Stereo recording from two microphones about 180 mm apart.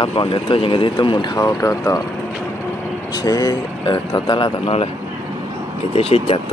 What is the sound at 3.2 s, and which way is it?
Speech, 20° left (ahead or behind).